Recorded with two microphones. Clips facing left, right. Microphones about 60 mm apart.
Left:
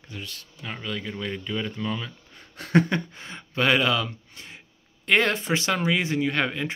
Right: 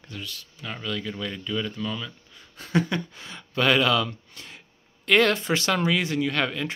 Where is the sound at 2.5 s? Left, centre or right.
Left.